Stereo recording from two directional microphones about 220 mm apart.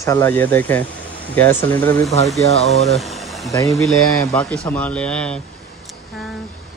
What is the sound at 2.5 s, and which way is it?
Speech, 30° left (ahead or behind).